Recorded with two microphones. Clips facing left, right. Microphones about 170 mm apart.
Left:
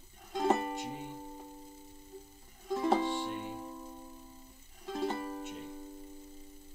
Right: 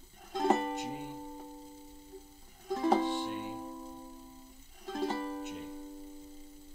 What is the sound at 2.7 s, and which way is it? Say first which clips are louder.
Music: right 1 dB; centre (ahead or behind).